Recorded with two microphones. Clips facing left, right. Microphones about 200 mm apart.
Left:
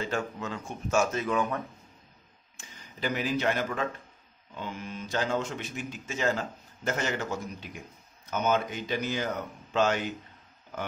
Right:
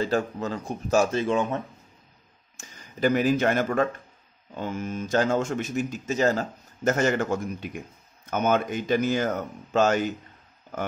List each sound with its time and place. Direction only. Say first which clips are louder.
0.0 s speech: right 6 dB; 35° right (ahead or behind)
2.5 s speech: right 5 dB; 45° right (ahead or behind)